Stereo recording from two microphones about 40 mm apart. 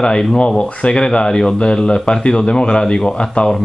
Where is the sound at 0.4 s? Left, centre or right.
Left.